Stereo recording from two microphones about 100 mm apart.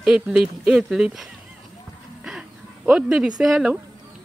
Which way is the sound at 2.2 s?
5° right (ahead or behind).